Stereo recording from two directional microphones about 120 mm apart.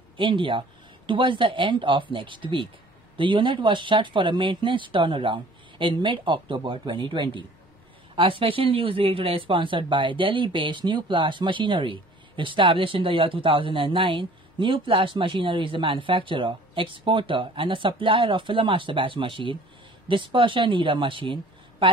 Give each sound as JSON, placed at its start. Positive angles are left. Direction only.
{"t": 0.2, "sound": "a woman's voice", "side_deg": -45}